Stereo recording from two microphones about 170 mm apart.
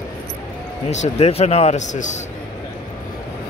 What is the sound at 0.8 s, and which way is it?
A man's voice, 40° left (ahead or behind).